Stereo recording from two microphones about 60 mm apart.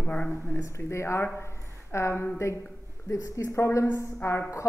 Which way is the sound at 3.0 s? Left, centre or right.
Left.